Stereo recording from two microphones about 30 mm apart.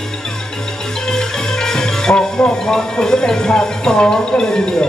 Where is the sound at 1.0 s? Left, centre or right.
Centre.